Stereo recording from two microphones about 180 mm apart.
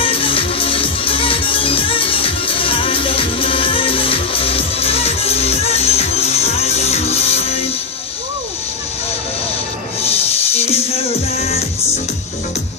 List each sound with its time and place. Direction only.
0.0 s music: 30° left (ahead or behind)
10.5 s music: 35° left (ahead or behind)